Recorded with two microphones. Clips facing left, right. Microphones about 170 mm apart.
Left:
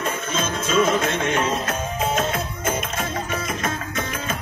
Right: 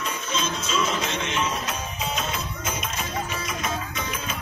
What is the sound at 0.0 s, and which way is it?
Music, 50° left (ahead or behind).